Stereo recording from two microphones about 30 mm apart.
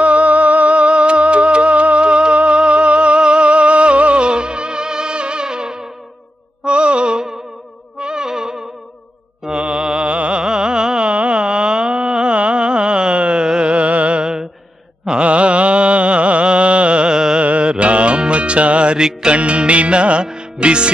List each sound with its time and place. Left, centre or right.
0.0 s music: right
6.6 s music: right; by 8.6 s centre
9.6 s music: right
10.4 s carnatic music: right
11.1 s a sound: right
12.4 s music: right
14.2 s mantra: right
15.2 s a sound: right
17.4 s music: right
18.9 s music: right
19.3 s music: right